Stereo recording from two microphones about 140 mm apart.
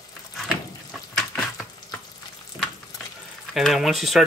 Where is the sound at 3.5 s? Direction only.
Centre (ahead or behind).